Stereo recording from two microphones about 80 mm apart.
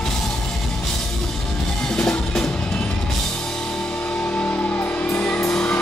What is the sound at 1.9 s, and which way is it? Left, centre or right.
Music, centre.